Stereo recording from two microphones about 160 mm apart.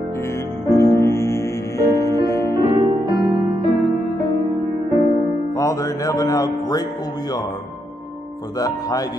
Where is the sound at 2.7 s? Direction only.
25° right (ahead or behind).